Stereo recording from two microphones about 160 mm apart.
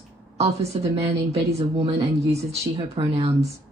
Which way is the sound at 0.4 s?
40° right (ahead or behind).